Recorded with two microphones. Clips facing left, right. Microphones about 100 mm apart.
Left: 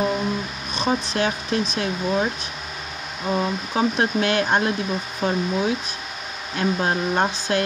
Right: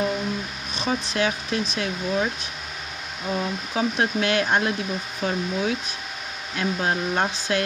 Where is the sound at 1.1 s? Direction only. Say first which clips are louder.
Left 2 dB; 35° left (ahead or behind).